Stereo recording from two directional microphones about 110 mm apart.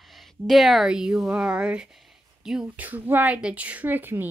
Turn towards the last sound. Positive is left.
turn(degrees=-15)  # may be behind; listen again after turning